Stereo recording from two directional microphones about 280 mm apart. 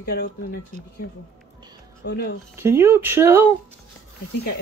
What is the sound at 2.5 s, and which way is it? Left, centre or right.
Speech, centre.